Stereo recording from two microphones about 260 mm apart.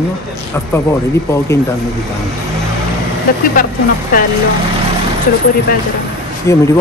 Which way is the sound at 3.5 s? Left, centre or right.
Left.